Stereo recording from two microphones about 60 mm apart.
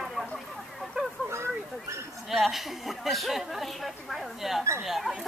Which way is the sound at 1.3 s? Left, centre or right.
Right.